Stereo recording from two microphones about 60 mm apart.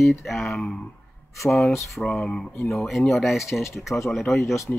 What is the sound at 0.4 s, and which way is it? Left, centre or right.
Speech, centre.